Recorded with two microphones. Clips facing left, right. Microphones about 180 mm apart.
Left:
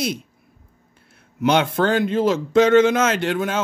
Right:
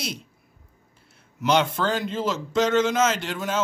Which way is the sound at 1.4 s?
55° left (ahead or behind).